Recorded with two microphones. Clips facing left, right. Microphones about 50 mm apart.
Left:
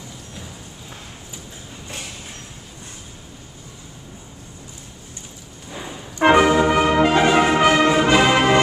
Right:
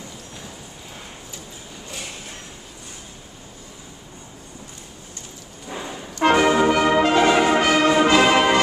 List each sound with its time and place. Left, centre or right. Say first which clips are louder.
6.1 s music: left 3 dB; centre
6.4 s music: left 1 dB; centre
6.7 s brass instrument: left 1 dB; centre
8.1 s music: even; centre